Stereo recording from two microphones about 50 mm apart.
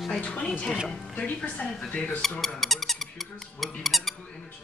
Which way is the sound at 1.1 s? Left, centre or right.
Left.